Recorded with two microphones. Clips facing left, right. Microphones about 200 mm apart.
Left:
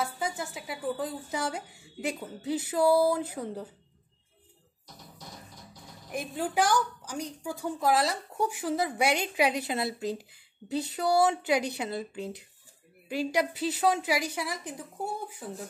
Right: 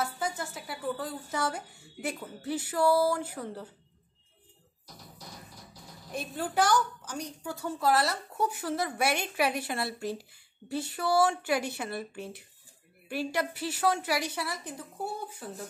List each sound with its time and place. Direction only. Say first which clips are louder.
0.0 s a woman's voice: left 1 dB; 10° left (ahead or behind)
6.1 s a woman's voice: left 1 dB; 15° left (ahead or behind)